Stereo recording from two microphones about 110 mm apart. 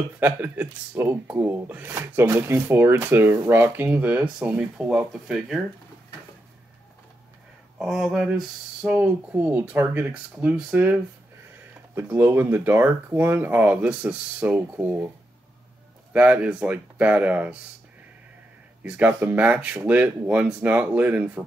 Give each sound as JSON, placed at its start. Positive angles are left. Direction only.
{"t": 0.2, "sound": "speech", "side_deg": -15}
{"t": 7.8, "sound": "speech", "side_deg": 0}
{"t": 16.1, "sound": "speech", "side_deg": -15}
{"t": 18.8, "sound": "speech", "side_deg": -15}